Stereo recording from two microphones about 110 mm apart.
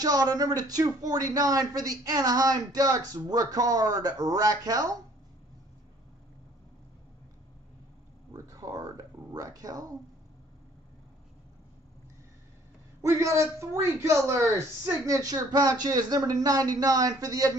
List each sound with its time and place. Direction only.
0.0 s speech: 35° right (ahead or behind)
8.3 s speech: 35° right (ahead or behind)
13.0 s speech: 25° right (ahead or behind)